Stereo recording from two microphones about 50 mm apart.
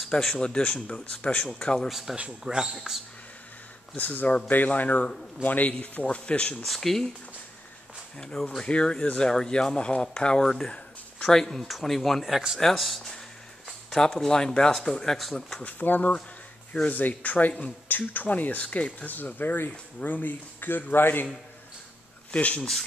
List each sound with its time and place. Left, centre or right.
0.1 s speech: centre
1.9 s speech: centre
3.9 s speech: left
6.6 s speech: centre
8.2 s speech: centre
15.6 s speech: left
19.0 s speech: left
22.3 s speech: left